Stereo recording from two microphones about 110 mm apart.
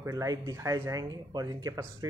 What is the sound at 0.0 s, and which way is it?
Speech, 30° right (ahead or behind).